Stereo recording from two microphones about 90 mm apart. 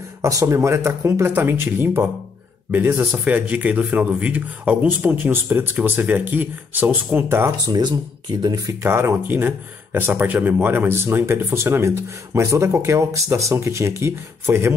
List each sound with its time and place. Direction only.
0.2 s speech: 40° right (ahead or behind)
7.7 s speech: 55° right (ahead or behind)
8.8 s speech: 30° right (ahead or behind)